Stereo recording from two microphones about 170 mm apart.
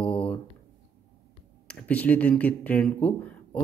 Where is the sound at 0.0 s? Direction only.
5° left (ahead or behind).